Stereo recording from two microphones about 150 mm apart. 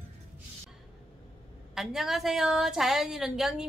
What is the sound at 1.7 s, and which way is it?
A woman's voice, centre (ahead or behind).